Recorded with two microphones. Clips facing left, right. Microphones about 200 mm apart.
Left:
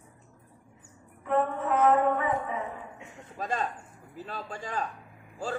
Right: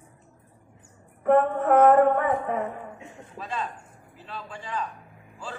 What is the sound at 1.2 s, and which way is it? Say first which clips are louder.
A woman's voice: right 7 dB; 55° right (ahead or behind).